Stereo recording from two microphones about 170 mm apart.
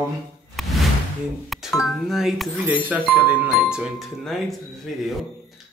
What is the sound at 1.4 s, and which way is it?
A man's voice, centre (ahead or behind).